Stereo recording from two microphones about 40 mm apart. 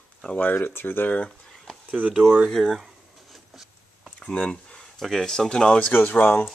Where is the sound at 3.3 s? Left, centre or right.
Centre.